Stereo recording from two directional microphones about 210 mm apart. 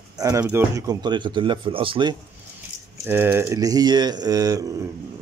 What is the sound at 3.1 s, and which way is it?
Speech, 10° right (ahead or behind).